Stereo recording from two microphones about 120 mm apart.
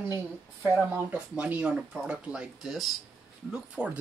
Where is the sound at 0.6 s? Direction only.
15° right (ahead or behind).